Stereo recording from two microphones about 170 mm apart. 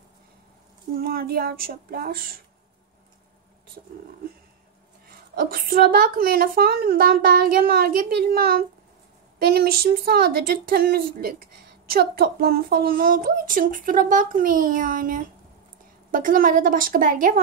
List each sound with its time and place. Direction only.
0.9 s a woman's voice: 60° right (ahead or behind)
5.3 s a woman's voice: 60° right (ahead or behind)